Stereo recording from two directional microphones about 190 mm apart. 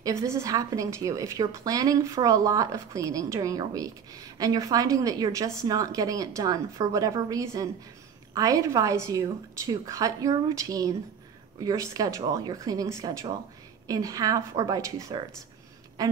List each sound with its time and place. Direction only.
0.0 s a woman's voice: 15° right (ahead or behind)